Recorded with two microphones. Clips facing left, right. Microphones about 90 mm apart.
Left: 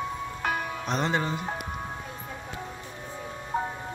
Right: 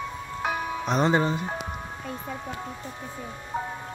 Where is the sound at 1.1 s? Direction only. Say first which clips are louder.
Right 5 dB; 25° right (ahead or behind).